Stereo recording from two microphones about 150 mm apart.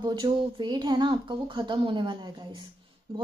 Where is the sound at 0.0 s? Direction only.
30° right (ahead or behind).